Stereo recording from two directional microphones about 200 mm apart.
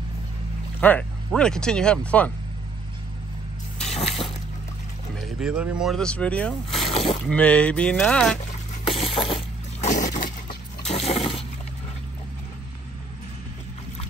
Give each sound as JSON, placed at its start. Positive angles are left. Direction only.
{"t": 0.7, "sound": "speech", "side_deg": 10}
{"t": 3.8, "sound": "a sound", "side_deg": 30}
{"t": 5.4, "sound": "speech", "side_deg": -5}
{"t": 6.7, "sound": "boat", "side_deg": 30}
{"t": 7.2, "sound": "speech", "side_deg": 5}
{"t": 8.8, "sound": "a sound", "side_deg": 30}